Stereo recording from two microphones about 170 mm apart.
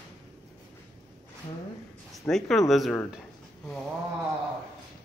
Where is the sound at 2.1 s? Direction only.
Centre (ahead or behind).